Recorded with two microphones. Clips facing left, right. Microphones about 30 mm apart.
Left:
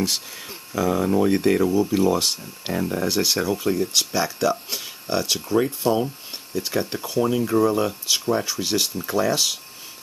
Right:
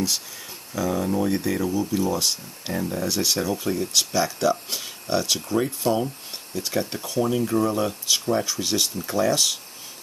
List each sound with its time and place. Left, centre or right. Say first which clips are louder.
0.7 s speech: left 4 dB; centre
1.4 s speech: left 5 dB; left
2.7 s speech: left 3 dB; centre